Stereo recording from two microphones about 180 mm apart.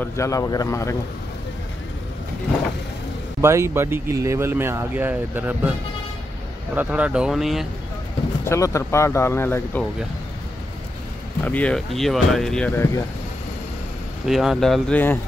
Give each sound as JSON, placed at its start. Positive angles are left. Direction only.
{"t": 0.0, "sound": "speech", "side_deg": 15}
{"t": 3.3, "sound": "speech", "side_deg": -15}
{"t": 8.5, "sound": "speech", "side_deg": 15}
{"t": 11.4, "sound": "speech", "side_deg": 10}
{"t": 14.2, "sound": "speech", "side_deg": 0}